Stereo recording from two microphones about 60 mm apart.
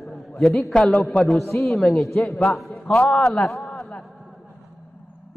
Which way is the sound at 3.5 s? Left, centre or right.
Centre.